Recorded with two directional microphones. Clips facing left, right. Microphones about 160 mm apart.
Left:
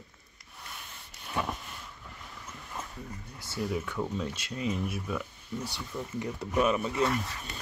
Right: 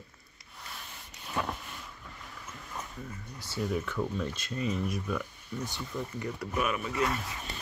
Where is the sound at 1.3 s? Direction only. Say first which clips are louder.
Left 1 dB; centre (ahead or behind).